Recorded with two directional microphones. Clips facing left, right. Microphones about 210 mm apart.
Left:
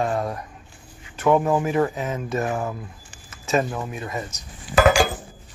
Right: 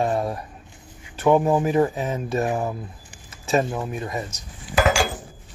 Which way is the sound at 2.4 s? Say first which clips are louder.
Right 2 dB; 20° right (ahead or behind).